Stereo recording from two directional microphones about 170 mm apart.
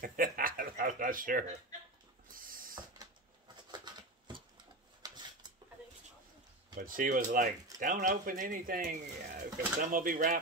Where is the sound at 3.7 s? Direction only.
25° right (ahead or behind).